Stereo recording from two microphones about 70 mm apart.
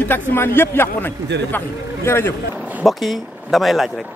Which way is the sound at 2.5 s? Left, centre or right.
Right.